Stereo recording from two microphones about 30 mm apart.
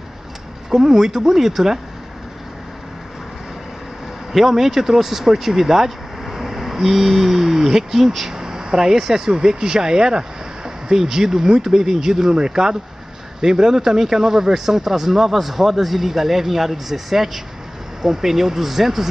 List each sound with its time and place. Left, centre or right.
0.7 s speech: centre
4.3 s speech: centre